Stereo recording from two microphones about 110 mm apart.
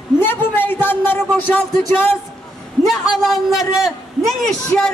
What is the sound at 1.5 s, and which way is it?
Speech, 15° left (ahead or behind).